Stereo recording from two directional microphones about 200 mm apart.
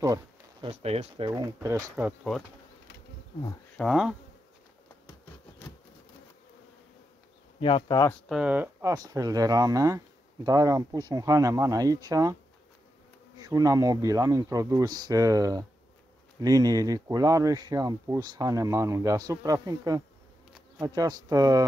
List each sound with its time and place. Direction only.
0.0 s a sound: 20° right (ahead or behind)
0.7 s speech: 30° right (ahead or behind); by 2.4 s 5° right (ahead or behind)
3.7 s speech: centre (ahead or behind)
7.6 s speech: 20° left (ahead or behind)
8.1 s speech: centre (ahead or behind); by 12.4 s 20° right (ahead or behind)
13.4 s speech: 15° right (ahead or behind)